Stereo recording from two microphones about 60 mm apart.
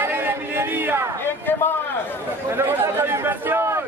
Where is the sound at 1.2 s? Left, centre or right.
Left.